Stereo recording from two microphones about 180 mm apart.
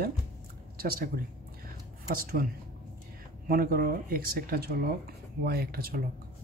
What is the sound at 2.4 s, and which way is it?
Speech, 55° right (ahead or behind).